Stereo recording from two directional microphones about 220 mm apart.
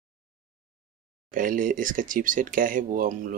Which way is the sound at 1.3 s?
40° right (ahead or behind).